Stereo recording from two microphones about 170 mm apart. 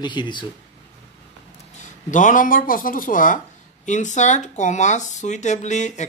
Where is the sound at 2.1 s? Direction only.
50° left (ahead or behind).